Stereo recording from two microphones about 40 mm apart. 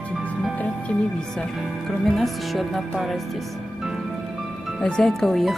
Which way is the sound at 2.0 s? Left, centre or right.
Centre.